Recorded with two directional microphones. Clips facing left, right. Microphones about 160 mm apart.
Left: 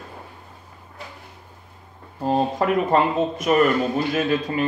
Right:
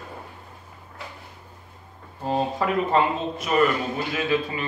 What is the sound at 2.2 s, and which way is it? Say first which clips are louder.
A man's voice: left 4 dB; 40° left (ahead or behind).